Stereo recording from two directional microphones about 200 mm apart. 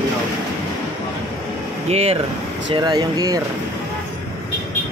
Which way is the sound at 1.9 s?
30° right (ahead or behind).